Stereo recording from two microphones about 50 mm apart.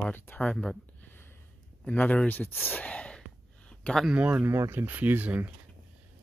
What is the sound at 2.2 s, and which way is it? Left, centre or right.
Speech, left.